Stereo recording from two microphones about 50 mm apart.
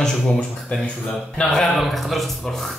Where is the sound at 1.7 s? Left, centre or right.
Centre.